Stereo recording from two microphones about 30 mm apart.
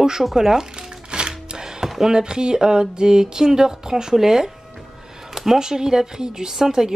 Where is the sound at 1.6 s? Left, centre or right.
Centre.